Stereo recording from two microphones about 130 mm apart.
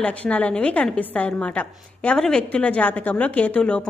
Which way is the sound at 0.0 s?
10° left (ahead or behind).